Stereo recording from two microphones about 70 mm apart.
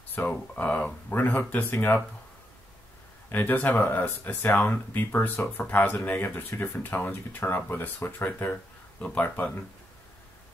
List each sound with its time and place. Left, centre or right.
0.1 s speech: left
3.3 s speech: left